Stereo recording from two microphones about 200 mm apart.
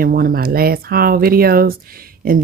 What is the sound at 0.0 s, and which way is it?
Speech, 45° right (ahead or behind).